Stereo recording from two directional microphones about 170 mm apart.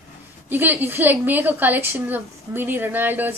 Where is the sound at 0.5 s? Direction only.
10° right (ahead or behind).